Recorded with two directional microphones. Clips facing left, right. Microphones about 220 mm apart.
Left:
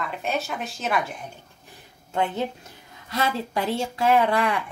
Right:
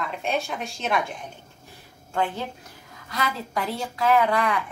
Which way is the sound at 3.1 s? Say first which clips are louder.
Left 3 dB; 25° left (ahead or behind).